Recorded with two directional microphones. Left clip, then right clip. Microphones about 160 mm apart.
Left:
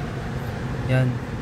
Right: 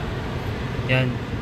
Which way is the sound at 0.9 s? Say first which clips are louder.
Right 3 dB; 30° left (ahead or behind).